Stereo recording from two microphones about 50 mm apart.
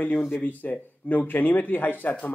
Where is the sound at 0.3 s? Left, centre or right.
Left.